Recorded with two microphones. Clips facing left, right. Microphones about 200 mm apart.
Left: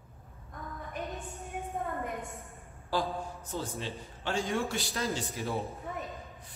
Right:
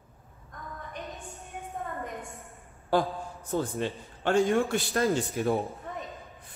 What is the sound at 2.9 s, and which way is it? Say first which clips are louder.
A man's voice: right 5 dB; 55° right (ahead or behind).